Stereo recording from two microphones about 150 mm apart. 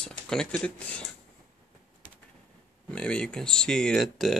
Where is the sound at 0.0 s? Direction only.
5° left (ahead or behind).